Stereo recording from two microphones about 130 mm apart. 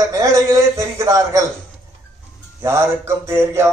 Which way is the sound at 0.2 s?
25° right (ahead or behind).